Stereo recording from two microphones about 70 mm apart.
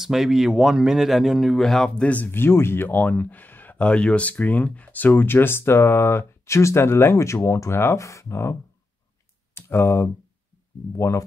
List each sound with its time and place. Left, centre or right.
0.0 s speech: centre
2.0 s speech: left
2.3 s speech: left
11.0 s speech: left